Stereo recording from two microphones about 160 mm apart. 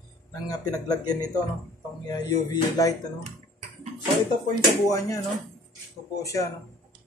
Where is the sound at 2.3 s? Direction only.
20° left (ahead or behind).